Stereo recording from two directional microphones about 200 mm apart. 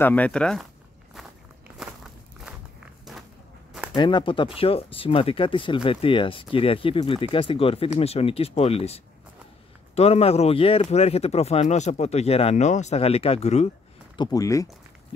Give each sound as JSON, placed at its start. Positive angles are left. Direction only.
{"t": 0.0, "sound": "speech", "side_deg": 10}
{"t": 3.9, "sound": "speech", "side_deg": 25}
{"t": 14.1, "sound": "speech", "side_deg": 20}